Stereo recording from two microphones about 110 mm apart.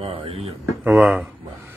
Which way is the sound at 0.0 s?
60° right (ahead or behind).